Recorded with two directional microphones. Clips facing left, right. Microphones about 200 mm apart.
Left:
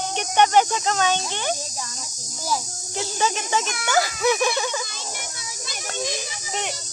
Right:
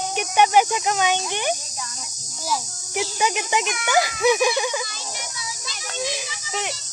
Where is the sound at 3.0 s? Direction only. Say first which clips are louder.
Right 1 dB; 15° right (ahead or behind).